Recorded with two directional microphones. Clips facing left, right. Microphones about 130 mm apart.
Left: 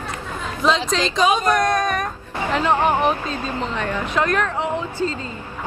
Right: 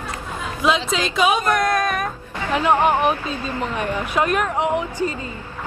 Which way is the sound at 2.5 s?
15° right (ahead or behind).